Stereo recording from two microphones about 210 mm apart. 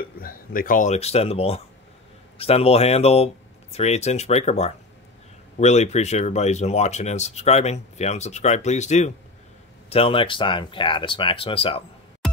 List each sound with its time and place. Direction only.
0.2 s speech: 45° left (ahead or behind); by 11.8 s 25° left (ahead or behind)